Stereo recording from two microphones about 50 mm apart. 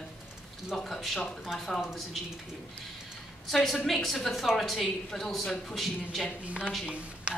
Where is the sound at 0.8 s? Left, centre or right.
Centre.